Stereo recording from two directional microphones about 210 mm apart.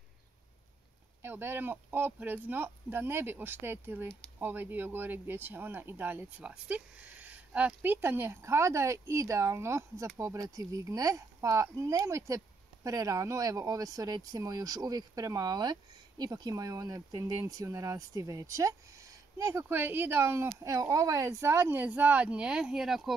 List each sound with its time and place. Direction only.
1.2 s speech: 10° right (ahead or behind)